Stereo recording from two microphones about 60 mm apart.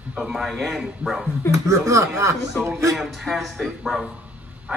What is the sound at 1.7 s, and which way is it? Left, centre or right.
Speech, right.